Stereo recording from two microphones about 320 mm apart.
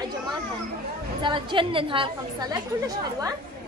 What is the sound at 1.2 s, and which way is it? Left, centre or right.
A woman's voice, centre.